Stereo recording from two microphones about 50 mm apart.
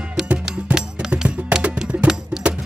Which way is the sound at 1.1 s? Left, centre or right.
Centre.